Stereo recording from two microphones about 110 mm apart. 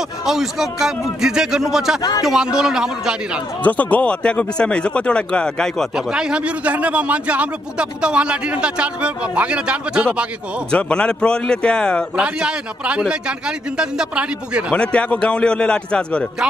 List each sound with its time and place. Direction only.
0.2 s a man's voice: 5° right (ahead or behind)
2.0 s speech: 35° left (ahead or behind)
2.2 s a man's voice: 5° right (ahead or behind)
3.6 s speech: 15° left (ahead or behind)
5.9 s a man's voice: 5° right (ahead or behind)
10.7 s speech: 10° left (ahead or behind)
12.2 s a man's voice: 10° right (ahead or behind)
14.7 s speech: 10° left (ahead or behind)